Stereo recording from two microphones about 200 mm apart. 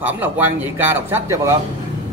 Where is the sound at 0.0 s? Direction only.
10° right (ahead or behind).